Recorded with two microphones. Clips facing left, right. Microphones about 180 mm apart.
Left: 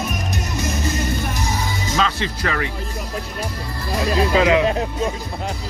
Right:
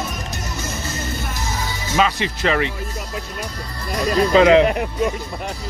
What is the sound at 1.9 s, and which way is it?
Music, 10° right (ahead or behind).